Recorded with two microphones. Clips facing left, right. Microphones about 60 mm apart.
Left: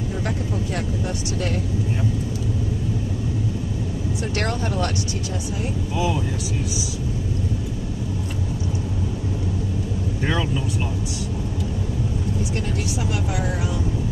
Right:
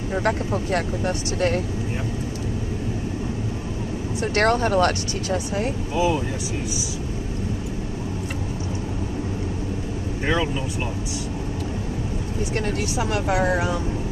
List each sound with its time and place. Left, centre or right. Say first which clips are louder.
0.2 s speech: right 4 dB; right
4.2 s speech: right 8 dB; right
5.9 s speech: right 3 dB; right
10.2 s speech: right 2 dB; centre
13.1 s speech: right 5 dB; right